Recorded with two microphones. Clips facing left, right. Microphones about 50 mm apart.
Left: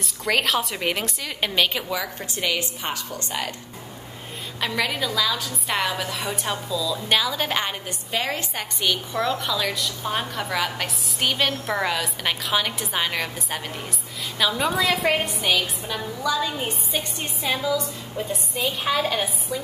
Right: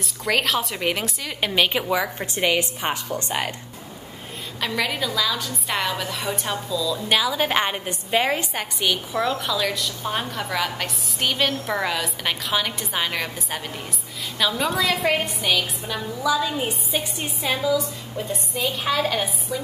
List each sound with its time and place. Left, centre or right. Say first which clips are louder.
0.0 s a woman's voice: even; centre; by 3.4 s right
4.6 s a woman's voice: even; centre